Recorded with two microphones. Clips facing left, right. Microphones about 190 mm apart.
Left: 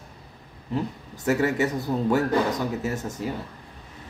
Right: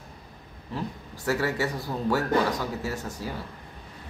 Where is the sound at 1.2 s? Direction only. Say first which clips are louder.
Left 4 dB; 20° left (ahead or behind).